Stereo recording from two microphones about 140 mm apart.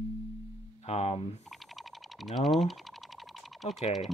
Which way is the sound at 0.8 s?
50° left (ahead or behind).